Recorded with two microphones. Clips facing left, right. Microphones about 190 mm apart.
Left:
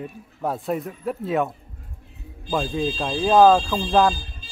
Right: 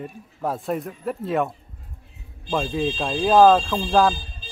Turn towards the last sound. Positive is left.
turn(degrees=0)  # may be behind; listen again after turning